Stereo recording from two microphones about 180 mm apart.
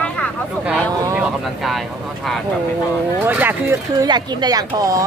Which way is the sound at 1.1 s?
Centre (ahead or behind).